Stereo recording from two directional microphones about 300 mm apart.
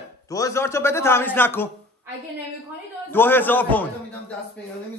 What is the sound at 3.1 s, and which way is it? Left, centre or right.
Speech, centre.